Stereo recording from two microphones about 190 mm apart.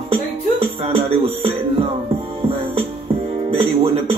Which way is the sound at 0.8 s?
30° right (ahead or behind).